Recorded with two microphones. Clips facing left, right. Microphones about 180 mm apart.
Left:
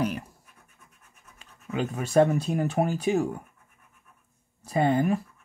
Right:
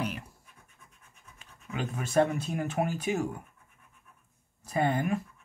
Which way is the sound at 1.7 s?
35° left (ahead or behind).